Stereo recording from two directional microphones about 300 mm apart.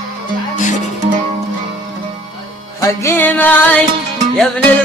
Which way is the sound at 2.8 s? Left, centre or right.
Centre.